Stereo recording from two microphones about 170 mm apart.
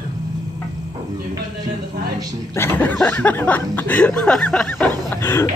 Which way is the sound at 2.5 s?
15° left (ahead or behind).